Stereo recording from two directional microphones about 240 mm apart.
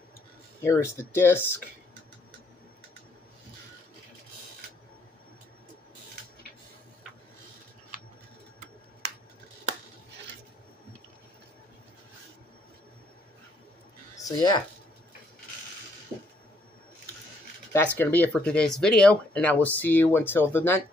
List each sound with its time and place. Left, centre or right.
0.7 s speech: centre
14.1 s a sound: centre
17.9 s speech: centre